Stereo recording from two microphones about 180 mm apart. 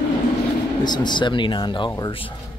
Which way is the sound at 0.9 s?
25° left (ahead or behind).